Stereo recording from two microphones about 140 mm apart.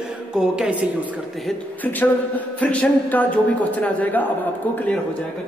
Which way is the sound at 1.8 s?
10° left (ahead or behind).